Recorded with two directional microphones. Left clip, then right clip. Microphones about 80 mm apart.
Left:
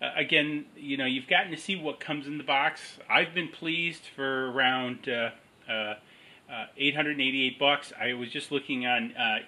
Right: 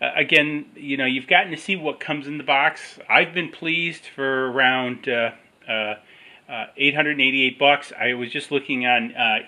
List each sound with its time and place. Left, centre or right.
0.0 s speech: right